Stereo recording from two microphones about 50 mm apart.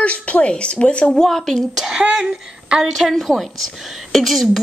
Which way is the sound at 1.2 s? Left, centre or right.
Centre.